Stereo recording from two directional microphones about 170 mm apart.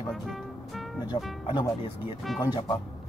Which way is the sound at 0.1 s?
Centre (ahead or behind).